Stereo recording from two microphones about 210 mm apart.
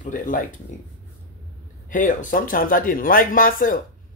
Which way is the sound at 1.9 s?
40° left (ahead or behind).